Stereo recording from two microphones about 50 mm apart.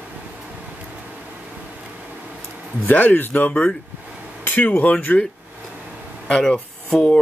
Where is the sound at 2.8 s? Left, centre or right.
Left.